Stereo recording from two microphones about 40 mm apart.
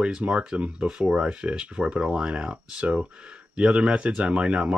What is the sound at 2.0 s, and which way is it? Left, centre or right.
Speech, centre.